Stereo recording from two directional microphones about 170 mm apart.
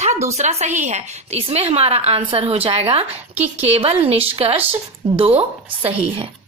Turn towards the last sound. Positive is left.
turn(degrees=-35)  # may be behind; listen again after turning